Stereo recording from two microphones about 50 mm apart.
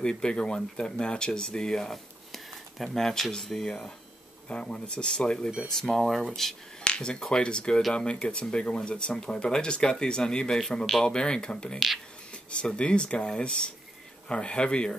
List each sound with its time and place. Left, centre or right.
0.0 s speech: centre
4.5 s speech: centre
5.7 s speech: centre
6.8 s speech: centre